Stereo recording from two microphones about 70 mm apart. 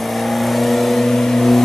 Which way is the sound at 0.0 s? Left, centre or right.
Centre.